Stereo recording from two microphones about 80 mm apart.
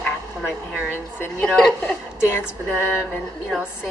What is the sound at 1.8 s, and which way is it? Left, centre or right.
Speech, left.